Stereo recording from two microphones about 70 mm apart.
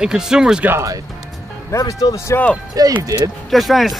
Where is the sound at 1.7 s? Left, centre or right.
Left.